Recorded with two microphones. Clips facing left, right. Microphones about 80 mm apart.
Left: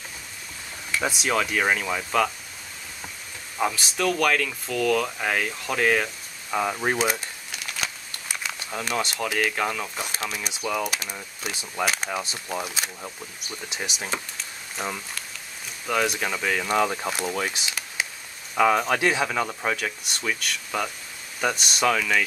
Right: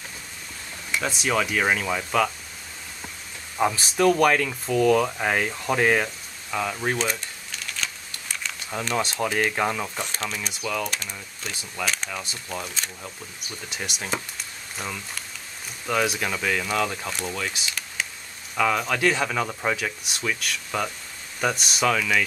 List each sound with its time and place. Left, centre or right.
1.0 s speech: centre
3.6 s speech: centre
4.0 s speech: centre
6.5 s speech: centre
7.8 s a sound: centre
9.6 s speech: centre
9.9 s speech: centre
15.9 s speech: centre
16.7 s speech: centre
17.1 s speech: centre
17.6 s a sound: centre
18.5 s speech: centre